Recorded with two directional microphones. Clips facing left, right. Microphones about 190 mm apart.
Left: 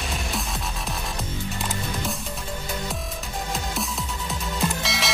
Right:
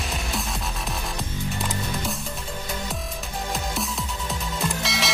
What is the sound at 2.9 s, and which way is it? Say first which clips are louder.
Music: even; centre (ahead or behind).